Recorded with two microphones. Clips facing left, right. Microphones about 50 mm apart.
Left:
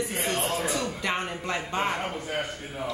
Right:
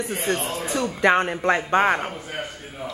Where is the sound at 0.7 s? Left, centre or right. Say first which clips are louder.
Right 9 dB; right.